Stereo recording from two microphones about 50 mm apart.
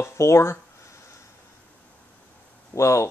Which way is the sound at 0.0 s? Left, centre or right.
Left.